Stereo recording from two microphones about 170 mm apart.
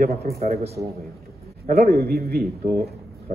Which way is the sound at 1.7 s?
65° right (ahead or behind).